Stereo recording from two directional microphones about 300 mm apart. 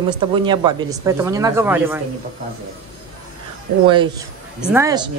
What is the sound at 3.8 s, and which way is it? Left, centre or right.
A woman's voice, centre.